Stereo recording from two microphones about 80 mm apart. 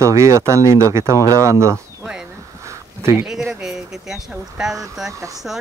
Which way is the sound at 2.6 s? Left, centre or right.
Right.